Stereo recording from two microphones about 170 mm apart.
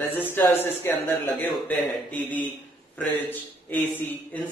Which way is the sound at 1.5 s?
Centre (ahead or behind).